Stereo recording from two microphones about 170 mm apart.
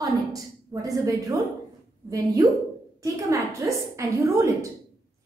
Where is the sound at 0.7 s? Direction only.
15° right (ahead or behind).